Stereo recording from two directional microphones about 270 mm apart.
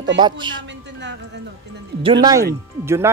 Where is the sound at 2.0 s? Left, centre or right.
Centre.